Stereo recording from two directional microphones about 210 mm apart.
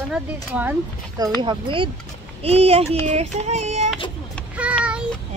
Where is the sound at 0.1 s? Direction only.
5° right (ahead or behind).